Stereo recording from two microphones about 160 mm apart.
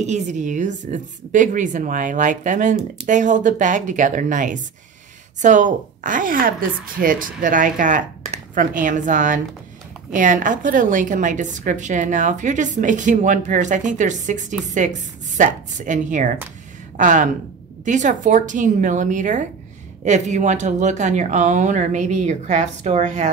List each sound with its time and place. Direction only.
0.0 s a woman's voice: 45° right (ahead or behind)